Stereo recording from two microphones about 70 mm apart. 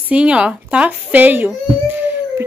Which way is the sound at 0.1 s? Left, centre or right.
Centre.